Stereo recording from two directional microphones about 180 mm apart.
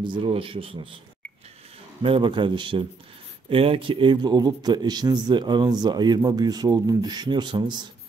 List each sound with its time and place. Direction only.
0.0 s a man's voice: 25° right (ahead or behind)
2.0 s a man's voice: 30° right (ahead or behind)